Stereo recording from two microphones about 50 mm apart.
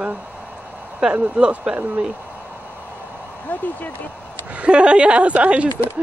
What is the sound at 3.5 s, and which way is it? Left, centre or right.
Speech, left.